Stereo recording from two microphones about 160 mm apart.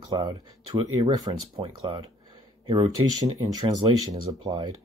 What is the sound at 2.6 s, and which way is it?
Speech, 30° right (ahead or behind).